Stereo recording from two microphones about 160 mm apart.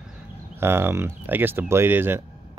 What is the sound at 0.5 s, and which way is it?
Speech, 15° right (ahead or behind).